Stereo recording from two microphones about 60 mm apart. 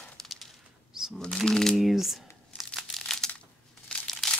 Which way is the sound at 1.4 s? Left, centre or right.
Centre.